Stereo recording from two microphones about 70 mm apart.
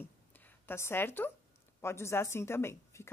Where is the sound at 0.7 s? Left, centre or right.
Left.